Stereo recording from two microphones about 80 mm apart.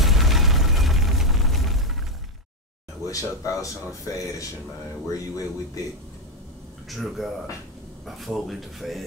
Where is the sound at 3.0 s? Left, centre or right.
Left.